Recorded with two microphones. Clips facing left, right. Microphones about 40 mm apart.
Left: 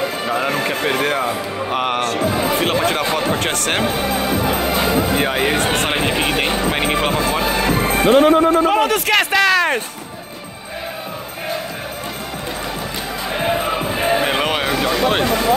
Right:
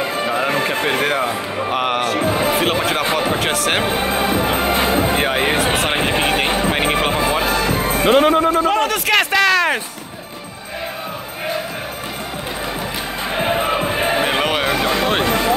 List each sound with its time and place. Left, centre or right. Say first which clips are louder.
0.2 s music: right 3 dB; centre
0.8 s speech: even; centre
2.2 s speech: right 1 dB; right
2.5 s speech: even; centre
3.8 s speech: even; centre
4.1 s music: right 1 dB; right
5.2 s speech: even; centre
8.1 s music: left 1 dB; right
8.6 s a sound: left 1 dB; centre
13.4 s music: right 1 dB; centre